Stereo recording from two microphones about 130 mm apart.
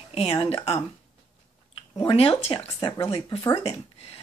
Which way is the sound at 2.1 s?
50° left (ahead or behind).